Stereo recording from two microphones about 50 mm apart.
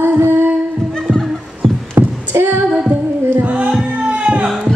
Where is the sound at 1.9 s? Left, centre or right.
Right.